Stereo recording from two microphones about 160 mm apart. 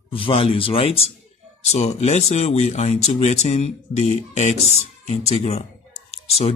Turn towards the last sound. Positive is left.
turn(degrees=40)  # may be behind; listen again after turning